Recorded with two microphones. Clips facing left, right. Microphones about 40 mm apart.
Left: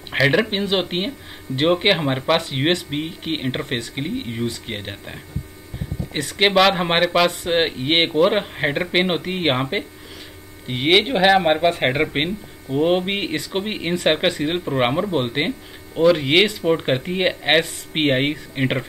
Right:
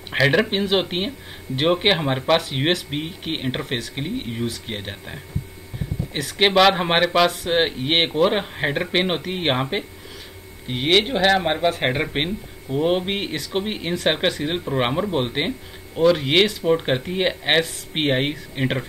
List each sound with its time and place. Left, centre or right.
0.1 s speech: centre